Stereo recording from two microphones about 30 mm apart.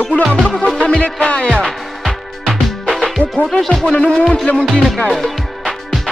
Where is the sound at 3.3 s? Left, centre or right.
Centre.